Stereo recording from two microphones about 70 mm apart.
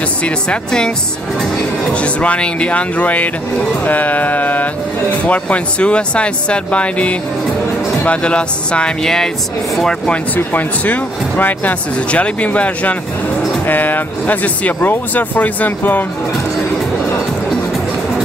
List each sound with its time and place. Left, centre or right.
0.2 s speech: centre
2.0 s speech: centre
10.3 s speech: left